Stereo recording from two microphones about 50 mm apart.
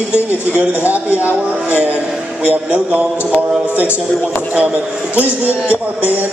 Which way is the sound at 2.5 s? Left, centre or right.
Right.